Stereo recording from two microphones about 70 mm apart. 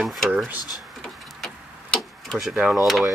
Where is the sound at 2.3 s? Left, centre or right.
Centre.